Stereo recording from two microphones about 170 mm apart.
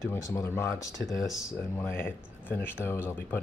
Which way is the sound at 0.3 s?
15° left (ahead or behind).